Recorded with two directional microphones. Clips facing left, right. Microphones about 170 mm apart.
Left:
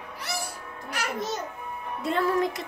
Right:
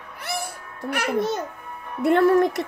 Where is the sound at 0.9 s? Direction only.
60° right (ahead or behind).